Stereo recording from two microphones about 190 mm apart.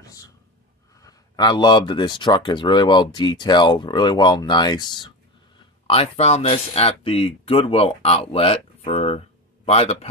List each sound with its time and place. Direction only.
1.0 s speech: 20° left (ahead or behind)